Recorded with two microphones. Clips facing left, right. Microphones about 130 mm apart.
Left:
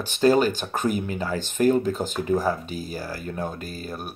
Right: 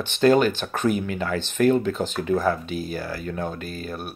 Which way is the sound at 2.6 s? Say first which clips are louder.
Right 3 dB; 40° left (ahead or behind).